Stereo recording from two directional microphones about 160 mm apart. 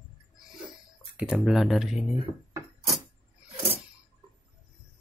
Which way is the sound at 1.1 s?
5° right (ahead or behind).